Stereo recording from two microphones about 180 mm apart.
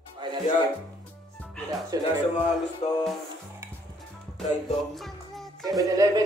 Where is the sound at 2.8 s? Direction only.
35° left (ahead or behind).